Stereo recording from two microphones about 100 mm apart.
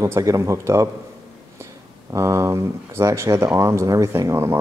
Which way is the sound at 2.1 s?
30° right (ahead or behind).